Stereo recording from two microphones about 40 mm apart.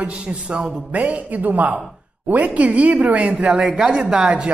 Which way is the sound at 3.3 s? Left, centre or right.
Centre.